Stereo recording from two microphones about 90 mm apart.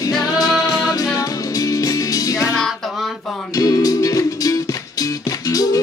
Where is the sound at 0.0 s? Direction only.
45° left (ahead or behind).